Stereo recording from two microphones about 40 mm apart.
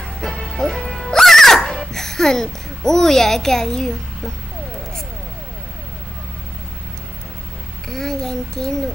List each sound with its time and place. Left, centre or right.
0.4 s music: centre
0.8 s music: centre
1.1 s music: centre
1.9 s a child's voice: centre
7.9 s a child's voice: centre